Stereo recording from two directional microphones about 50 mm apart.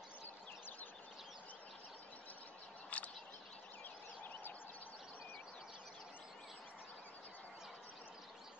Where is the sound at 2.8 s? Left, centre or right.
Left.